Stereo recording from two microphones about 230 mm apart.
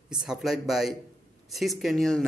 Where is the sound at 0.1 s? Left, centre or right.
Centre.